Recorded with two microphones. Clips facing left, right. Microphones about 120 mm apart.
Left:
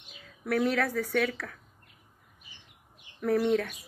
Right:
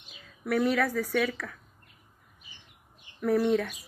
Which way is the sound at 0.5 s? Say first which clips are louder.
Right 1 dB; 60° left (ahead or behind).